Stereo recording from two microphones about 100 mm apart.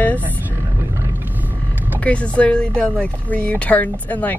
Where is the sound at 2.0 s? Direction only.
10° left (ahead or behind).